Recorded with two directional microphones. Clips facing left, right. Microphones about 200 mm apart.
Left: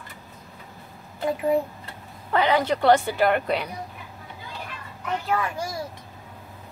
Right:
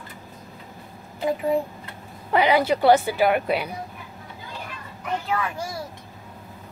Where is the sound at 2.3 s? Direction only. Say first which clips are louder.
Right 2 dB; 10° right (ahead or behind).